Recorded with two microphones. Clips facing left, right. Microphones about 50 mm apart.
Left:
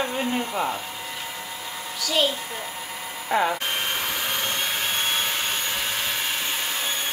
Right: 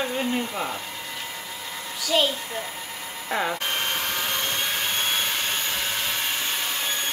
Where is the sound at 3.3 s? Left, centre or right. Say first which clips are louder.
Left 4 dB; centre.